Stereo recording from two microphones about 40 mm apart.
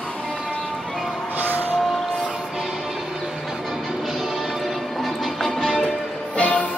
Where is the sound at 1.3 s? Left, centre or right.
Right.